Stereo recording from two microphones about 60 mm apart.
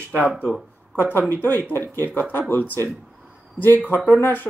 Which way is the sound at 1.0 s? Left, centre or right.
Left.